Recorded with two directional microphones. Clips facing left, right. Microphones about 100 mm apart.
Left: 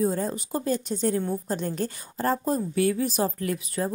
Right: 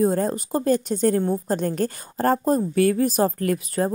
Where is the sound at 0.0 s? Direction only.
50° right (ahead or behind).